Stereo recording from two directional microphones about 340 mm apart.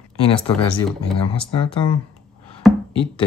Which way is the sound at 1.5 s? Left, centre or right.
Centre.